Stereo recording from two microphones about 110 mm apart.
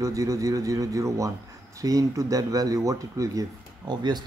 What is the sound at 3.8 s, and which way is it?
Speech, 40° right (ahead or behind).